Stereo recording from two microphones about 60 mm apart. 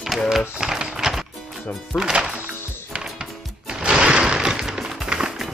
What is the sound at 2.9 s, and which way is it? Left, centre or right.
Music, centre.